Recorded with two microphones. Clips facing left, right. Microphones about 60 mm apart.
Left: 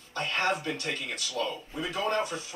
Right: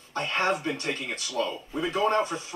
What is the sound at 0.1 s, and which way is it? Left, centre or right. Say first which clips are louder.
Speech: right 2 dB; right.